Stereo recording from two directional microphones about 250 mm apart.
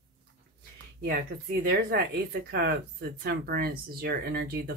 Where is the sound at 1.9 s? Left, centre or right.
Right.